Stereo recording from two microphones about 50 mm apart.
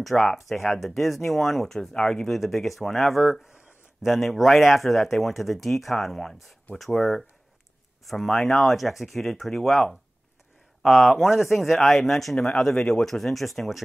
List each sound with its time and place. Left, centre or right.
0.0 s speech: centre
2.0 s speech: centre
2.2 s speech: centre
3.4 s a sound: left
4.0 s speech: centre
11.1 s speech: centre